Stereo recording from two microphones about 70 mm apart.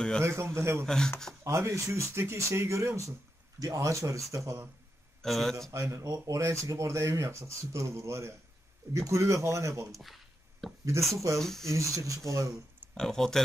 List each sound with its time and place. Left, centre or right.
0.2 s a man's voice: right
0.8 s speech: centre
1.4 s speech: right
5.2 s a man's voice: centre
5.7 s speech: right
10.0 s a sound: centre
11.3 s a man's voice: centre
11.6 s speech: right
12.9 s speech: centre